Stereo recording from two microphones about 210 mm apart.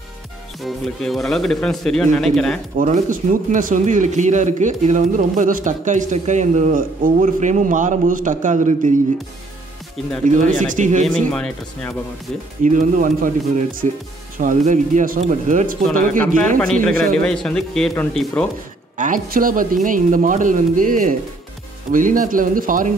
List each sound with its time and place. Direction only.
0.6 s speech: centre (ahead or behind)
2.8 s a man's voice: 40° right (ahead or behind)
10.2 s a man's voice: 35° right (ahead or behind)
11.1 s speech: 5° left (ahead or behind)
12.6 s a man's voice: 35° right (ahead or behind)
14.4 s a man's voice: 35° right (ahead or behind)
16.5 s speech: 5° left (ahead or behind)
18.9 s a man's voice: 40° right (ahead or behind)